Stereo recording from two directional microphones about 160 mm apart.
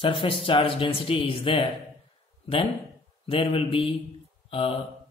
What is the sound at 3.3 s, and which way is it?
Speech, 35° left (ahead or behind).